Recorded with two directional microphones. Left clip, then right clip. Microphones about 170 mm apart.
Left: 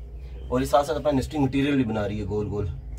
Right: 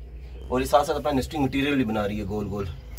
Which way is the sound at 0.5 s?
35° right (ahead or behind).